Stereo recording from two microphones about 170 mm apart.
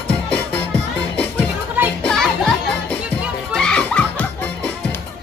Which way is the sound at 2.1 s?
5° left (ahead or behind).